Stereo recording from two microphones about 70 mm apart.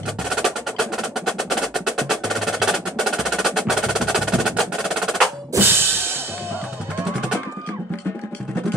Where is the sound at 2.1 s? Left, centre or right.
Centre.